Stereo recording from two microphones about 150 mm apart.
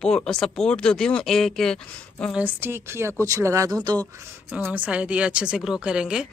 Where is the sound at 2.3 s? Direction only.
15° right (ahead or behind).